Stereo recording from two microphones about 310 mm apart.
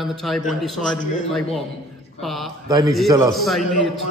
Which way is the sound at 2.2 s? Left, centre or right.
Centre.